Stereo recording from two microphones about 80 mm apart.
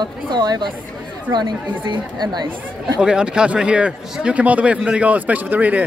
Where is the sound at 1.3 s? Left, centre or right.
Right.